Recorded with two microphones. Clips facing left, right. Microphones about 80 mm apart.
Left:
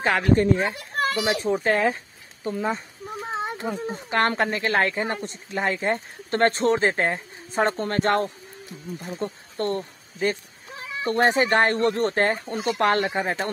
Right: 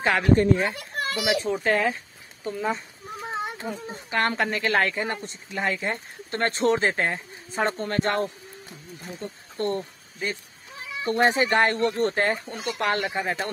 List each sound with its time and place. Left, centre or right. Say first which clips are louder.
0.0 s speech: even; left
0.9 s a child's voice: left 3 dB; left
1.4 s speech: left 2 dB; left
3.4 s a sound: left 3 dB; left
3.8 s speech: left 2 dB; left
11.1 s speech: left 1 dB; left